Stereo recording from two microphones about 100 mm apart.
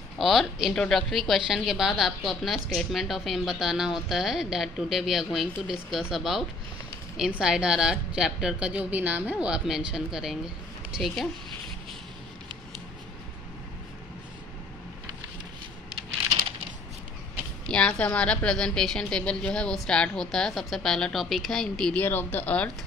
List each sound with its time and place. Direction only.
0.2 s a woman's voice: centre (ahead or behind)
17.6 s a woman's voice: 10° left (ahead or behind)
21.9 s a woman's voice: 20° left (ahead or behind)